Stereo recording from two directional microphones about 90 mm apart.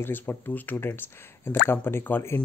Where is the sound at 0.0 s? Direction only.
25° left (ahead or behind).